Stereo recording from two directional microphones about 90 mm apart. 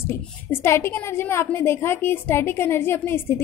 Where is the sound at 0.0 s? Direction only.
25° left (ahead or behind).